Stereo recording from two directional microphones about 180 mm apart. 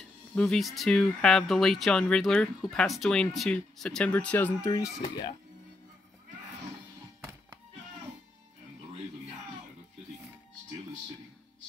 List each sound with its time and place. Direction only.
0.3 s speech: 5° left (ahead or behind)
4.6 s speech: 20° left (ahead or behind)